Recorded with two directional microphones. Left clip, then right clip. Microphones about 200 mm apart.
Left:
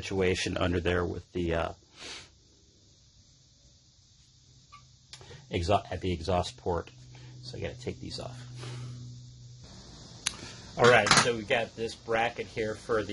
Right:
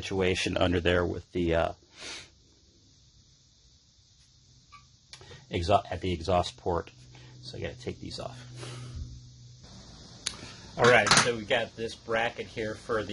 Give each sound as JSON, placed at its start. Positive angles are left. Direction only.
{"t": 0.0, "sound": "speech", "side_deg": -15}
{"t": 5.1, "sound": "speech", "side_deg": -10}
{"t": 10.2, "sound": "a sound", "side_deg": 20}
{"t": 11.2, "sound": "speech", "side_deg": 25}